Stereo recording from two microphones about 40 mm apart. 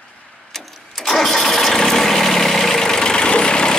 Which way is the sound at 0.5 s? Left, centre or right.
Centre.